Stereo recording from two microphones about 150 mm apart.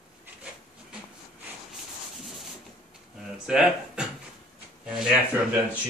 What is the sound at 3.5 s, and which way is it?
Speech, 5° right (ahead or behind).